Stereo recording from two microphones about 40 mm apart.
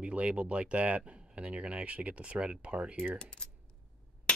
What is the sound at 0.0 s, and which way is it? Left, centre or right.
Speech, right.